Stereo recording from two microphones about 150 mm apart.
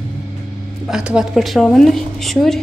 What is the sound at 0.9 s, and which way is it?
A woman's voice, 5° right (ahead or behind).